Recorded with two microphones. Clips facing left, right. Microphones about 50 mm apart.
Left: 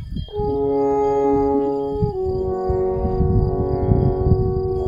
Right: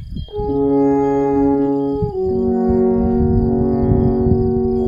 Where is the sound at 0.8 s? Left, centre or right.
Right.